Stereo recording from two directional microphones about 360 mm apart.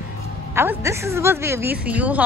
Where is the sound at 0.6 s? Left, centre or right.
Centre.